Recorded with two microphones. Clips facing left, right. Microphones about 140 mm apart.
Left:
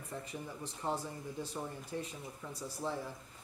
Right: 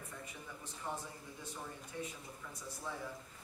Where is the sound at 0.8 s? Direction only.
35° left (ahead or behind).